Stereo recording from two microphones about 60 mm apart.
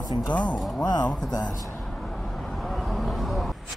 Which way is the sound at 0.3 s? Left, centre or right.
Left.